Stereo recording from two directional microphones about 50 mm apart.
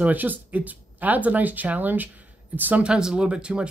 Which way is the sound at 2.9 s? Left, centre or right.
Centre.